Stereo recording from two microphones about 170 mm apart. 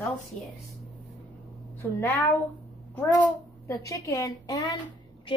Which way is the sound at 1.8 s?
10° left (ahead or behind).